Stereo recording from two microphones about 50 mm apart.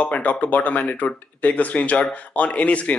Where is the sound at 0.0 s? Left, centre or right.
Left.